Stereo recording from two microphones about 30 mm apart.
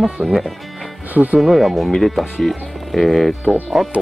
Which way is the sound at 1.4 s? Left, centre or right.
Centre.